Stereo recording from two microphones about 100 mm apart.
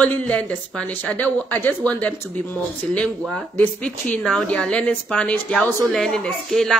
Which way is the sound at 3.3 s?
10° left (ahead or behind).